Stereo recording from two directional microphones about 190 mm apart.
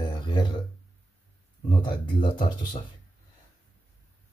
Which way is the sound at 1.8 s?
25° left (ahead or behind).